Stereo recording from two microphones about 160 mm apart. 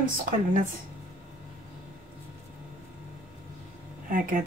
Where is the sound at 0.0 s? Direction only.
55° right (ahead or behind).